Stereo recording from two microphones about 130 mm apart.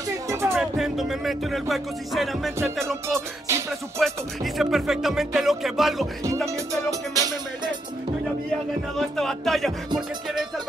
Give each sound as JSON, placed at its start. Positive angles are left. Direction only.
{"t": 0.3, "sound": "music", "side_deg": -20}
{"t": 0.6, "sound": "music", "side_deg": -5}
{"t": 3.1, "sound": "music", "side_deg": -20}
{"t": 4.0, "sound": "music", "side_deg": 0}
{"t": 6.4, "sound": "music", "side_deg": -25}
{"t": 8.5, "sound": "music", "side_deg": 5}